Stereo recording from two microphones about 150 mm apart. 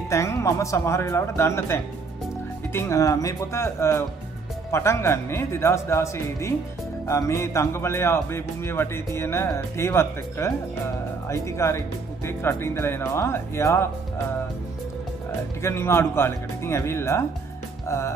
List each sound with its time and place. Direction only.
0.1 s speech: 20° left (ahead or behind)
15.6 s speech: 15° left (ahead or behind)